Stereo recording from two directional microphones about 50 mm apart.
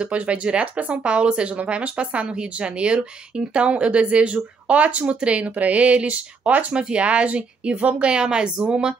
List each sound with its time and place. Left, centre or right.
0.0 s speech: right